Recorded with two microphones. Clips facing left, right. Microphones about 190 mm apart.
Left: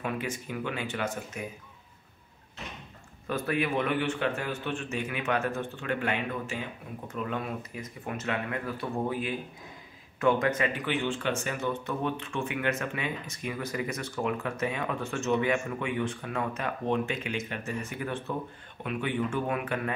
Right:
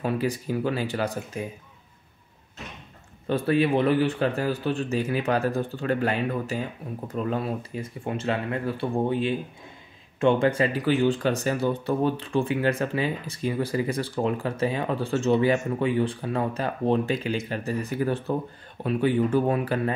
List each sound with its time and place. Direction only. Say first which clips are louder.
0.0 s speech: right 7 dB; 35° right (ahead or behind)
3.3 s speech: right 7 dB; 30° right (ahead or behind)